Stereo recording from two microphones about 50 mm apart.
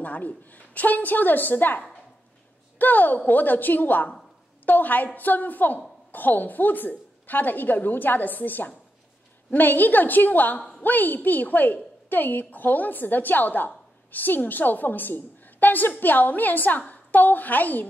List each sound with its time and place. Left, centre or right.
0.0 s a woman's voice: left
2.8 s a woman's voice: left